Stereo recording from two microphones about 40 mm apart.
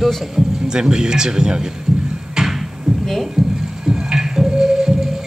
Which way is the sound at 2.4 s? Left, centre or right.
Centre.